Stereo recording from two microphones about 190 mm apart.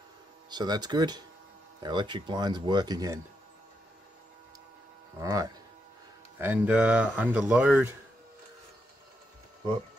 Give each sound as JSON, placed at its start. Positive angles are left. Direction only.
{"t": 0.5, "sound": "speech", "side_deg": -20}
{"t": 5.2, "sound": "speech", "side_deg": -20}